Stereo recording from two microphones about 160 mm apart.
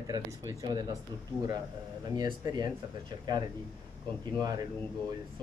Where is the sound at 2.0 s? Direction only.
25° right (ahead or behind).